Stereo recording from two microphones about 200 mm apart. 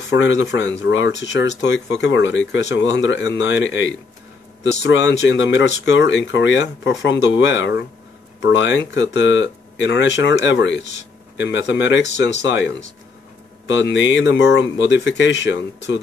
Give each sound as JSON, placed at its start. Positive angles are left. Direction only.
{"t": 0.1, "sound": "speech", "side_deg": 70}
{"t": 4.9, "sound": "speech", "side_deg": 65}